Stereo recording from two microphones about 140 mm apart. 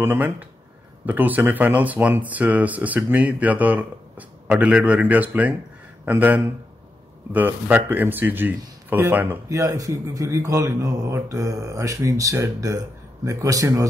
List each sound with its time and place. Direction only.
0.0 s speech: 15° right (ahead or behind)